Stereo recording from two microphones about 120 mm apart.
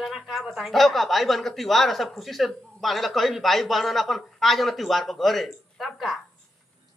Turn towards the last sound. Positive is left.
turn(degrees=0)  # may be behind; listen again after turning